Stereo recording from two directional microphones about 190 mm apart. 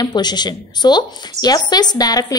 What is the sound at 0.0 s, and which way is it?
A woman's voice, 20° left (ahead or behind).